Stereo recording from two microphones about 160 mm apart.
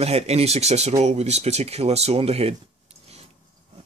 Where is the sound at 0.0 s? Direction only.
40° right (ahead or behind).